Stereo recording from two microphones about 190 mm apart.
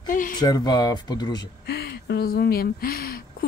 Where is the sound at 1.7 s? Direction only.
60° left (ahead or behind).